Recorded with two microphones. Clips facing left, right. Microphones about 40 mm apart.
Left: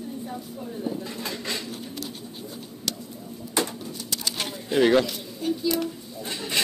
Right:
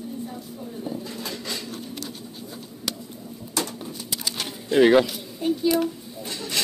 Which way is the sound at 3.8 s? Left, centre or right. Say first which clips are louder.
Even; centre.